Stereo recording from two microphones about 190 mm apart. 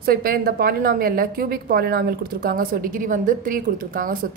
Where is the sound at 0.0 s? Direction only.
50° right (ahead or behind).